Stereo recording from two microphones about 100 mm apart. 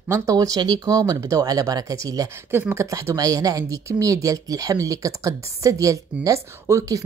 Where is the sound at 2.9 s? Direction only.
30° right (ahead or behind).